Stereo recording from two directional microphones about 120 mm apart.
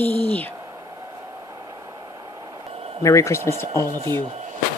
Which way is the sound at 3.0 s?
25° left (ahead or behind).